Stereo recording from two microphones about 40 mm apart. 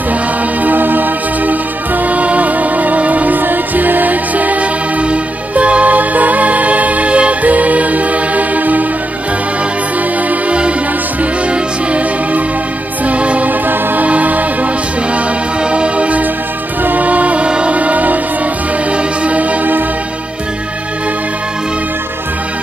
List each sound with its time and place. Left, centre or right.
0.7 s music: right
13.0 s music: right
13.5 s music: right
15.7 s music: right
17.5 s music: right
17.7 s music: right